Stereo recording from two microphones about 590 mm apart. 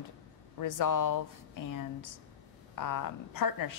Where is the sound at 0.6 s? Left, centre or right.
Left.